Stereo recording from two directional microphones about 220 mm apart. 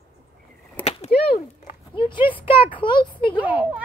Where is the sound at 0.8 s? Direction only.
5° left (ahead or behind).